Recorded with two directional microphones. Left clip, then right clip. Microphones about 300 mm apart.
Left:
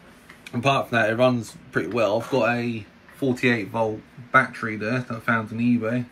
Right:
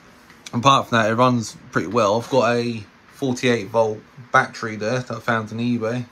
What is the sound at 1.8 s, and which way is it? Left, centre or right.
Speech, right.